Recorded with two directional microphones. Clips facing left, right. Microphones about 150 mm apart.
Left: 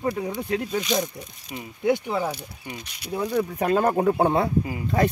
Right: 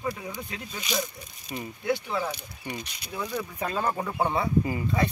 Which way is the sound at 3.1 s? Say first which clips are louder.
Left 8 dB; 40° left (ahead or behind).